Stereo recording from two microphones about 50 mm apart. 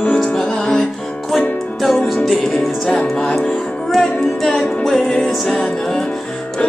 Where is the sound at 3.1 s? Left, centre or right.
Centre.